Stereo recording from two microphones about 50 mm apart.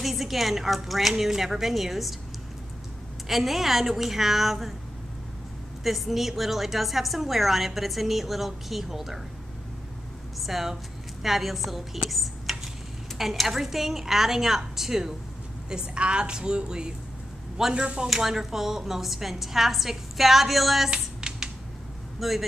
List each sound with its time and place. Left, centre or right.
0.0 s a woman's voice: centre
3.3 s a woman's voice: centre
5.9 s a woman's voice: centre
10.4 s a woman's voice: centre
12.1 s a sound: centre
13.2 s a woman's voice: centre
15.7 s a woman's voice: centre
20.9 s typing: centre
22.2 s a woman's voice: centre